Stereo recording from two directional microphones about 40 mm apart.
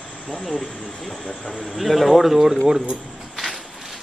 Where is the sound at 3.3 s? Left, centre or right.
Centre.